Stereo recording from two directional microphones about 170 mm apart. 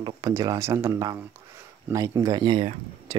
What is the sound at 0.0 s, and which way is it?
Speech, 20° right (ahead or behind).